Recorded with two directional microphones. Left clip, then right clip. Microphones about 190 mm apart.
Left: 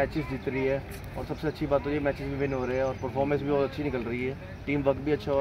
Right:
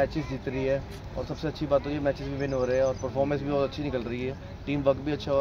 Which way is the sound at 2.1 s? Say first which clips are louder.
Even; 20° right (ahead or behind).